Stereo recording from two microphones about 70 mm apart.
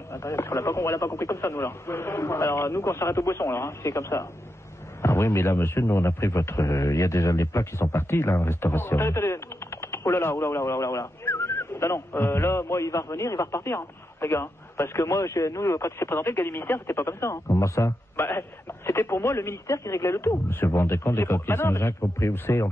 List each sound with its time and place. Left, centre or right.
0.1 s a man's voice: left